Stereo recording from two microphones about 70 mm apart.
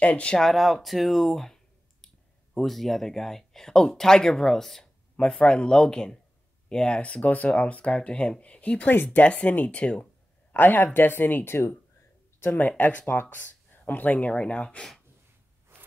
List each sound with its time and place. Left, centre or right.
0.0 s speech: centre
0.4 s speech: centre
0.8 s a sound: centre
2.5 s speech: centre
10.5 s speech: left
15.7 s zipper: right